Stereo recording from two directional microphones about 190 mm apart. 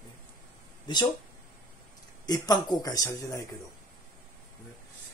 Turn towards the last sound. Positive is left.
turn(degrees=20)  # may be behind; listen again after turning